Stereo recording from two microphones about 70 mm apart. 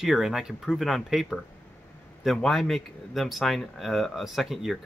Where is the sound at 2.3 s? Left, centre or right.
Centre.